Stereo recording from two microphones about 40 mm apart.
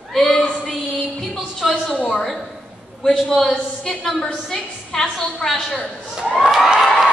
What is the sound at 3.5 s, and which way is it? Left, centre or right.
A woman's voice, centre.